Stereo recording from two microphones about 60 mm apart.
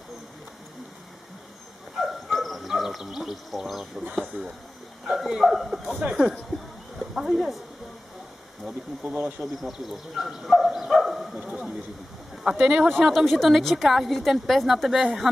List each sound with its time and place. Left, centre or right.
2.0 s dog: centre
4.1 s a woman's voice: centre
9.0 s speech: right
9.4 s speech: centre
12.4 s speech: centre
12.9 s a woman's voice: centre